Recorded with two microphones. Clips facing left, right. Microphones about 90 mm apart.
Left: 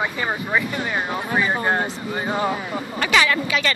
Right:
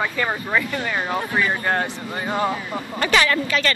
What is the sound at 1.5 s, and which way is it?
Speech, 25° left (ahead or behind).